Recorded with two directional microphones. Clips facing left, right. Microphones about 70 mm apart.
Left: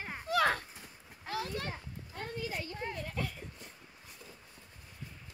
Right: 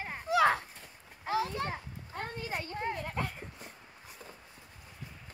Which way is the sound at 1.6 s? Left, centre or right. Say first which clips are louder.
Right 4 dB; right.